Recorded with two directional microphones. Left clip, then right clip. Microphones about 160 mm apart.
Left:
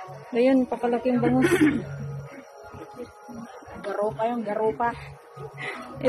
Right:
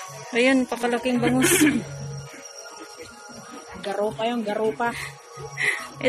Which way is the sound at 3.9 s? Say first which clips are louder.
Right 1 dB; 65° right (ahead or behind).